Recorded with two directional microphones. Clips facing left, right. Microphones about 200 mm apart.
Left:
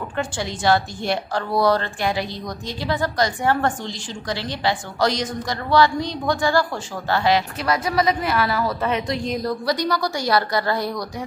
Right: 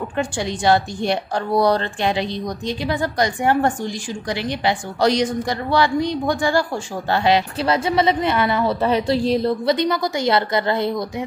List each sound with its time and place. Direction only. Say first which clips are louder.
0.2 s a woman's voice: right 2 dB; 15° right (ahead or behind)